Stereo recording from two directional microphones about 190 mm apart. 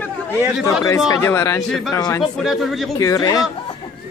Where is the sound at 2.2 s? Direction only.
Centre (ahead or behind).